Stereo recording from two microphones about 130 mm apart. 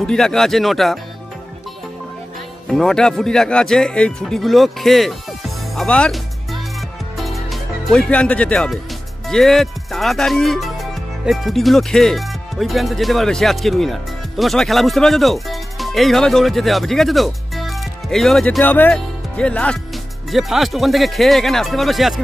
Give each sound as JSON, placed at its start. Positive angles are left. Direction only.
{"t": 0.0, "sound": "speech", "side_deg": 5}
{"t": 2.7, "sound": "speech", "side_deg": 5}
{"t": 7.2, "sound": "music", "side_deg": 0}
{"t": 9.3, "sound": "speech", "side_deg": 0}